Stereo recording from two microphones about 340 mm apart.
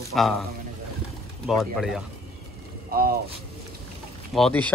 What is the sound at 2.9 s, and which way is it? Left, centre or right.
Speech, right.